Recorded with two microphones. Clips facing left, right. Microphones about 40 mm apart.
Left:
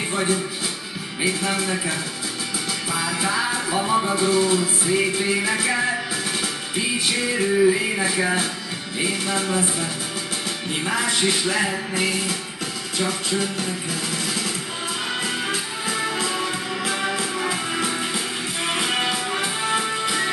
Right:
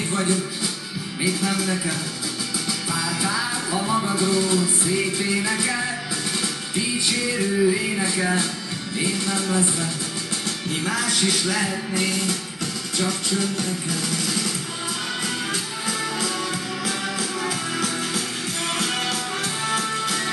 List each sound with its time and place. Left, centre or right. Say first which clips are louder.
0.1 s speech: even; centre
1.2 s music: left 1 dB; centre
9.0 s speech: left 2 dB; left
10.7 s music: left 1 dB; centre
16.0 s music: left 3 dB; centre